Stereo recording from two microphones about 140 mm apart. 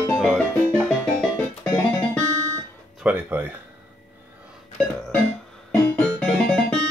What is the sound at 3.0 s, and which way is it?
Speech, 10° right (ahead or behind).